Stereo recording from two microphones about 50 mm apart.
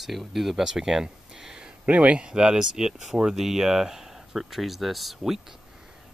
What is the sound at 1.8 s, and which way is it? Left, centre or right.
Speech, right.